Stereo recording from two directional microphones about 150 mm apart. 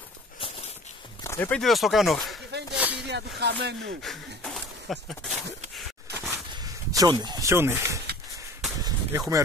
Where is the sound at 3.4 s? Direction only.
90° right.